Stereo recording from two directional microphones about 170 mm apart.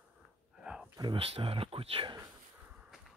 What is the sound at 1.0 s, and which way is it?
Speech, 30° right (ahead or behind).